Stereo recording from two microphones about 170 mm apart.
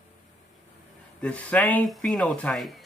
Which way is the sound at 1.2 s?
10° left (ahead or behind).